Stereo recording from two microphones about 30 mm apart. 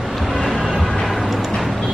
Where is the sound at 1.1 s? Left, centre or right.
Centre.